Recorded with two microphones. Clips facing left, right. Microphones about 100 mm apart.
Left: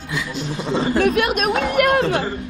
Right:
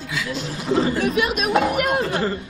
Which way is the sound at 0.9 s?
55° left (ahead or behind).